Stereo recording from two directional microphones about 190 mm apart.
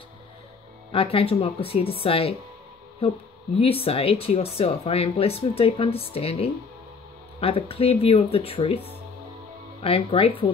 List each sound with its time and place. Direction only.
0.9 s speech: 30° left (ahead or behind)
3.5 s speech: 30° left (ahead or behind)